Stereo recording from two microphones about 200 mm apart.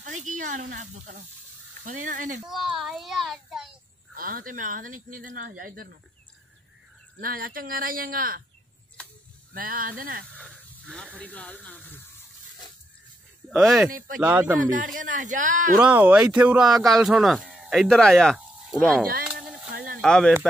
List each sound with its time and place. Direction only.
0.0 s speech: 40° right (ahead or behind)
2.4 s speech: centre (ahead or behind)
4.1 s speech: 45° right (ahead or behind)
7.2 s speech: 45° right (ahead or behind)
9.5 s speech: 45° right (ahead or behind)
10.3 s speech: 5° left (ahead or behind)
13.5 s speech: centre (ahead or behind)
13.8 s speech: 45° right (ahead or behind)
14.2 s speech: 10° right (ahead or behind)
15.0 s speech: 40° right (ahead or behind)
15.8 s speech: 5° right (ahead or behind)
19.2 s a sound: 5° right (ahead or behind)
19.7 s a sound: 45° right (ahead or behind)
20.0 s speech: 5° left (ahead or behind)